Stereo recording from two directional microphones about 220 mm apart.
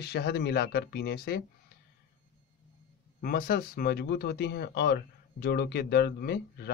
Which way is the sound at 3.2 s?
45° left (ahead or behind).